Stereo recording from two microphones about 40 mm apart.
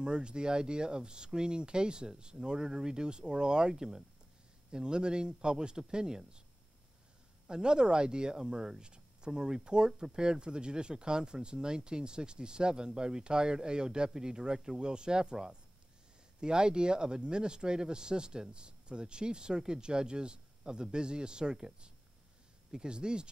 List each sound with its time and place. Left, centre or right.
0.0 s speech: right
7.4 s speech: right